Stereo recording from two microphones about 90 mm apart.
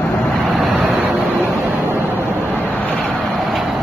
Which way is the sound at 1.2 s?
25° right (ahead or behind).